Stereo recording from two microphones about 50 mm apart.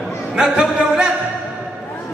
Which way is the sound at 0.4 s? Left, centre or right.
Centre.